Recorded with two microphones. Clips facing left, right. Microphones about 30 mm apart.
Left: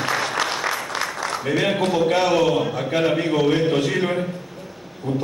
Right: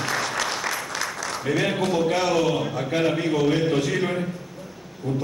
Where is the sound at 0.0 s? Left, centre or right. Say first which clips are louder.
Left 3 dB; left.